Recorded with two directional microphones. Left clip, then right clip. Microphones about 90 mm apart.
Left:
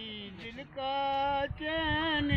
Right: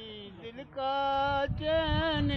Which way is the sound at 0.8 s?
45° right (ahead or behind).